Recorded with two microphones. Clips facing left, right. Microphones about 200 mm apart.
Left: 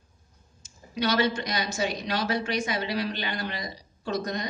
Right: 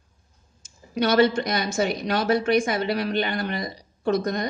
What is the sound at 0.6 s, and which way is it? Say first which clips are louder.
A woman's voice: right 5 dB; 50° right (ahead or behind).